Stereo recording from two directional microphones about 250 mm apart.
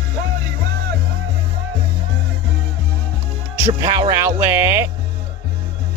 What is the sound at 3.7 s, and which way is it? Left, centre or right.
Speech, centre.